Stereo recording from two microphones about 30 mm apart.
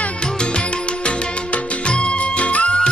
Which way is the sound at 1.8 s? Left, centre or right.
Left.